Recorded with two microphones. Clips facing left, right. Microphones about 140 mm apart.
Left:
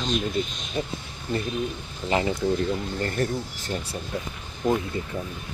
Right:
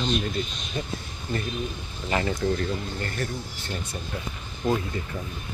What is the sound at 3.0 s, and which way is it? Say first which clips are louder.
Speech: left 5 dB; 40° left (ahead or behind).